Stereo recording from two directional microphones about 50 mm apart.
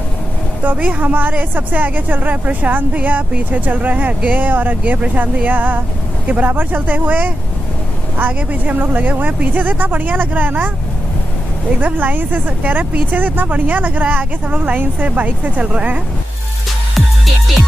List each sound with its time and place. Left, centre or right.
0.7 s speech: right
11.8 s speech: right